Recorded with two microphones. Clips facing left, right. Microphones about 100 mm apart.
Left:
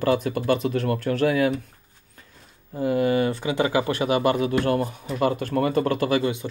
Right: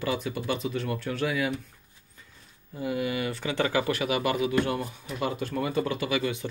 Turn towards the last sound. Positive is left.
turn(degrees=50)  # may be behind; listen again after turning